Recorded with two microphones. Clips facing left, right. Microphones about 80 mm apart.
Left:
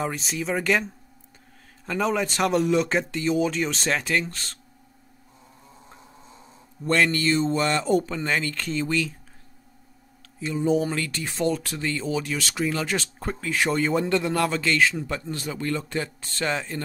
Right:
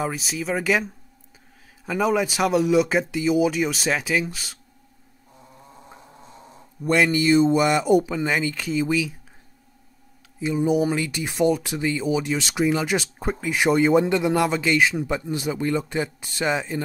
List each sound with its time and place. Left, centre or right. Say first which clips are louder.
0.0 s speech: right 1 dB; centre
6.8 s speech: right 2 dB; centre
10.4 s speech: right 2 dB; centre